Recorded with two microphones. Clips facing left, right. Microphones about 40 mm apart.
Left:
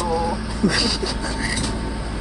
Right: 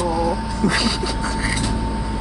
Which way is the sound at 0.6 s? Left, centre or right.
Right.